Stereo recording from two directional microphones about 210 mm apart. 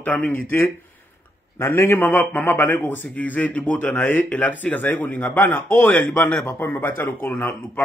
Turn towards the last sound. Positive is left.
turn(degrees=10)  # may be behind; listen again after turning